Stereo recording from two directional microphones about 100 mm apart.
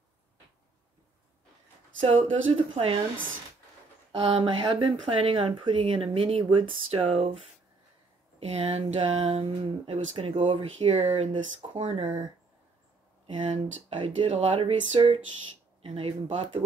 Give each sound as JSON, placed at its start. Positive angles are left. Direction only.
{"t": 2.0, "sound": "speech", "side_deg": -70}
{"t": 4.2, "sound": "speech", "side_deg": -60}
{"t": 8.4, "sound": "speech", "side_deg": -90}
{"t": 11.8, "sound": "speech", "side_deg": -90}
{"t": 13.3, "sound": "speech", "side_deg": -60}